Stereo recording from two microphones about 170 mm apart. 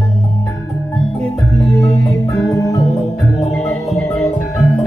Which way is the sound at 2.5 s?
20° left (ahead or behind).